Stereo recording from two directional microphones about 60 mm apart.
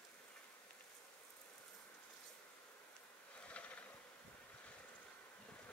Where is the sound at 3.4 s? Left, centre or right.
Left.